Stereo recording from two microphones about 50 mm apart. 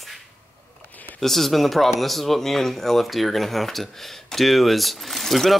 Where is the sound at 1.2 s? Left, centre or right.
Centre.